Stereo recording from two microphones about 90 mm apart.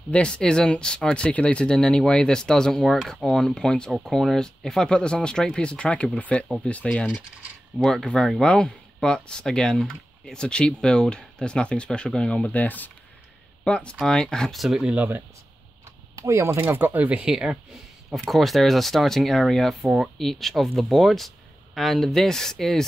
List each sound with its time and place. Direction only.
0.1 s speech: 10° left (ahead or behind)
15.0 s speech: 20° right (ahead or behind)
16.2 s speech: 30° right (ahead or behind); by 22.8 s 5° left (ahead or behind)